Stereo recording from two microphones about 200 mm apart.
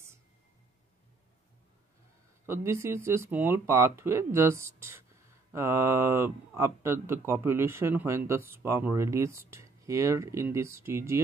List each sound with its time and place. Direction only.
2.4 s speech: 15° right (ahead or behind)